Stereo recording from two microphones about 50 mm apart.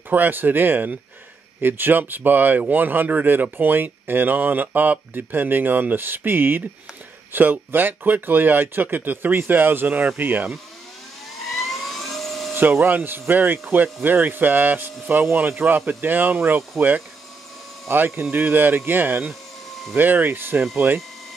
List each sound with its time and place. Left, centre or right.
0.1 s speech: right
11.6 s a sound: centre
12.5 s speech: right
17.9 s speech: right